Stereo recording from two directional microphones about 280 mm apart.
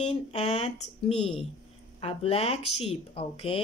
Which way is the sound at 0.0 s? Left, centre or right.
Left.